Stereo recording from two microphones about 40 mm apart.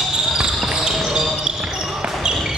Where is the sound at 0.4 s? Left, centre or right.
Centre.